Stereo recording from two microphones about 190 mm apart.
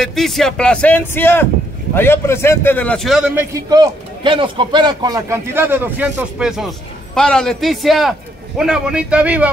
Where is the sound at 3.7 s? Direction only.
25° right (ahead or behind).